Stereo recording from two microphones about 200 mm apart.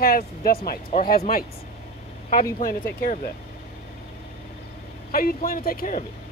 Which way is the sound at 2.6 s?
45° left (ahead or behind).